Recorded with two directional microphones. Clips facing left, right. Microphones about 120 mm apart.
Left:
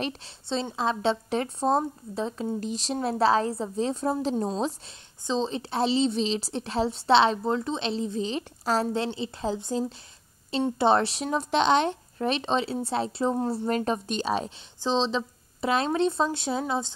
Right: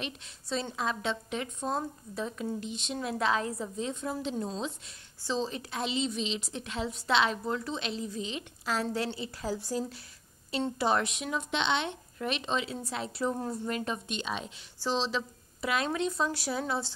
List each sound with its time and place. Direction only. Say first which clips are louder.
0.0 s speech: left 7 dB; 30° left (ahead or behind)
4.8 s speech: left 4 dB; 20° left (ahead or behind)
8.9 s speech: left 4 dB; 25° left (ahead or behind)
14.8 s speech: left 5 dB; 25° left (ahead or behind)